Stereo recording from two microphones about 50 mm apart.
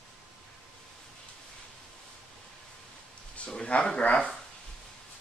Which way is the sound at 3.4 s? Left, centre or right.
Left.